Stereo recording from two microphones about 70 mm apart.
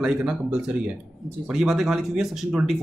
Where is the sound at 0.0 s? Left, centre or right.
Centre.